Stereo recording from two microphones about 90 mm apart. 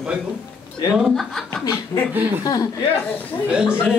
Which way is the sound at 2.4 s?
45° left (ahead or behind).